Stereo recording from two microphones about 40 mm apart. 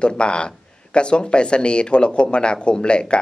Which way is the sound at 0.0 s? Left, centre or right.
Left.